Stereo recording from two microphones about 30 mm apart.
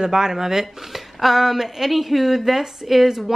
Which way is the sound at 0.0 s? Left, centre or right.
Right.